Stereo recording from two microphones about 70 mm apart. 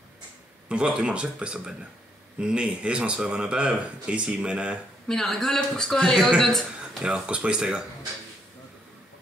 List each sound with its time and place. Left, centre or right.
0.7 s speech: centre
5.0 s a man's voice: centre
7.0 s speech: centre